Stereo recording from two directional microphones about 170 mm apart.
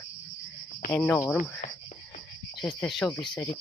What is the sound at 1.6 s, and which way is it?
Cricket, 45° left (ahead or behind).